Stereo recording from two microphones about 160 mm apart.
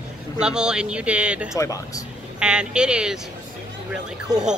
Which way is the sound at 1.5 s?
20° left (ahead or behind).